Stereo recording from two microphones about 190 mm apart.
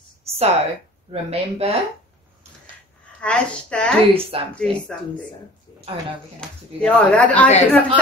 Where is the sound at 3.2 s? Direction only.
5° left (ahead or behind).